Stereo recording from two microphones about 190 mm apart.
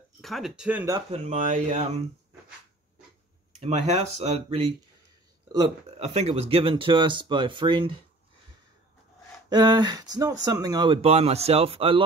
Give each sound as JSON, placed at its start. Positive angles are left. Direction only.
{"t": 0.2, "sound": "speech", "side_deg": 0}
{"t": 1.1, "sound": "speech", "side_deg": -35}
{"t": 3.5, "sound": "speech", "side_deg": -35}
{"t": 5.9, "sound": "speech", "side_deg": -35}
{"t": 9.5, "sound": "speech", "side_deg": -20}